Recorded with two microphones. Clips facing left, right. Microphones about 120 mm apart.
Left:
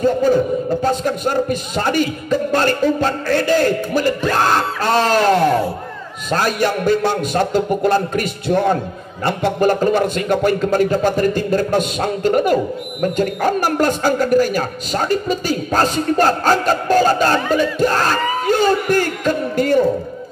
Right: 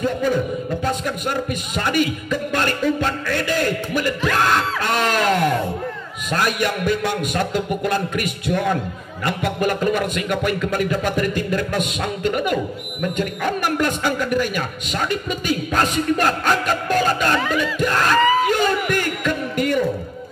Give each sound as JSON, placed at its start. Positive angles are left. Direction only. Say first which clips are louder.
{"t": 0.0, "sound": "a man's voice", "louder": "left 6 dB", "side_deg": 35}
{"t": 4.3, "sound": "music", "louder": "left 2 dB", "side_deg": 35}
{"t": 6.3, "sound": "a man's voice", "louder": "left 4 dB", "side_deg": 35}